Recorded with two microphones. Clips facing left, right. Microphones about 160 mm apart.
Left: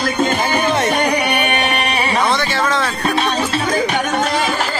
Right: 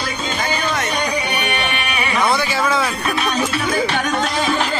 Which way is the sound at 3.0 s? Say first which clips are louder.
Left 2 dB; 30° left (ahead or behind).